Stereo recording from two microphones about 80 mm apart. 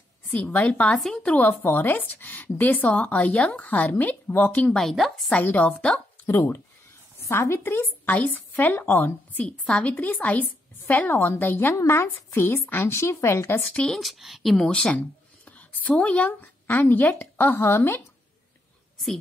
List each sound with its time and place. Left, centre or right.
0.3 s a woman's voice: left
4.7 s speech: centre
5.3 s speech: left
6.2 s speech: left
11.7 s a woman's voice: left
13.7 s speech: centre
14.7 s a woman's voice: centre; by 18.0 s left